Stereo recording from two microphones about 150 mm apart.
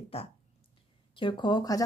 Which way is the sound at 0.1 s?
40° left (ahead or behind).